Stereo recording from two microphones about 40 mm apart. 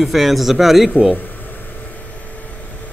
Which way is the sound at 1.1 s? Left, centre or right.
Left.